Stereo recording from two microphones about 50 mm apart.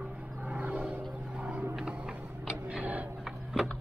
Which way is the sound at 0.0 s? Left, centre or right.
Right.